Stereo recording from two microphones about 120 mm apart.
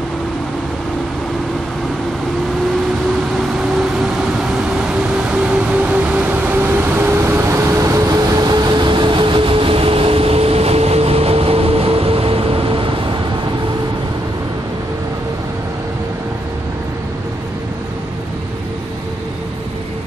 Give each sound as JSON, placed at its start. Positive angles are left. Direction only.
{"t": 4.0, "sound": "vehicle", "side_deg": -5}